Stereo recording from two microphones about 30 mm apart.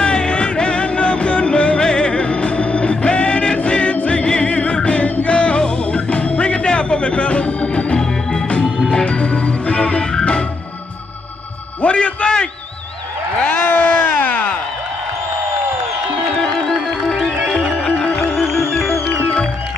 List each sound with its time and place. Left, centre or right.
0.0 s music: left
8.0 s organ: centre
8.9 s music: left
11.8 s music: left
13.4 s a sound: left
16.4 s music: centre
18.0 s music: left
18.4 s music: centre